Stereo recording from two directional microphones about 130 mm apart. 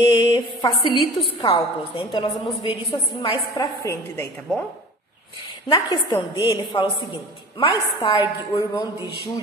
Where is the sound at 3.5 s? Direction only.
25° left (ahead or behind).